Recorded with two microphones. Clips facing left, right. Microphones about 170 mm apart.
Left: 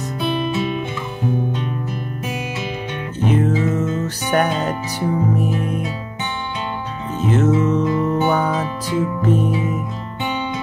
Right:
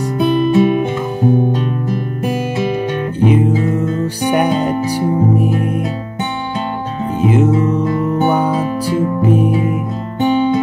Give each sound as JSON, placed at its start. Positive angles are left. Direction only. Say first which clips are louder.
{"t": 0.2, "sound": "music", "louder": "right 9 dB", "side_deg": -45}
{"t": 3.3, "sound": "music", "louder": "right 4 dB", "side_deg": -10}
{"t": 3.8, "sound": "music", "louder": "right 4 dB", "side_deg": -35}
{"t": 4.2, "sound": "music", "louder": "right 5 dB", "side_deg": -10}
{"t": 5.5, "sound": "music", "louder": "right 5 dB", "side_deg": -50}
{"t": 7.2, "sound": "music", "louder": "right 3 dB", "side_deg": -10}
{"t": 9.5, "sound": "music", "louder": "right 5 dB", "side_deg": -55}
{"t": 10.2, "sound": "music", "louder": "right 11 dB", "side_deg": -45}